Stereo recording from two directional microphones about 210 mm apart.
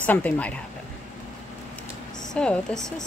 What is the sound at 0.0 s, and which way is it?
Speech, 5° left (ahead or behind).